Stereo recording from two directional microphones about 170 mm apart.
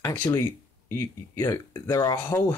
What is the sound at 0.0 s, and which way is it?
Speech, 15° left (ahead or behind).